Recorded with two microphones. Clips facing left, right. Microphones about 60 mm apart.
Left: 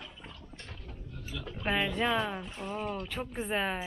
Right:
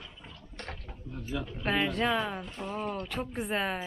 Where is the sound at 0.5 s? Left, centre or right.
Right.